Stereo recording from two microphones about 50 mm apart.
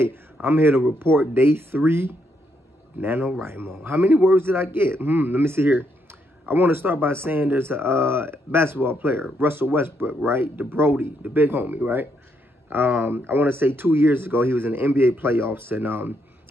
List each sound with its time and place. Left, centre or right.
0.0 s speech: right